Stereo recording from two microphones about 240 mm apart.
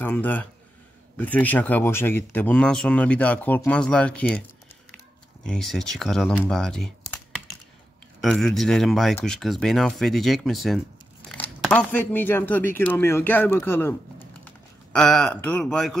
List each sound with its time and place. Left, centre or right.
0.0 s speech: centre
5.4 s speech: centre
8.2 s speech: centre